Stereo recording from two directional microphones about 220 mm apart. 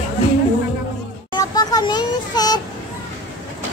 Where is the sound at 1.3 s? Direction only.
20° left (ahead or behind).